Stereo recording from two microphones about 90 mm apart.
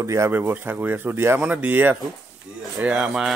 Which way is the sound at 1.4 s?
15° right (ahead or behind).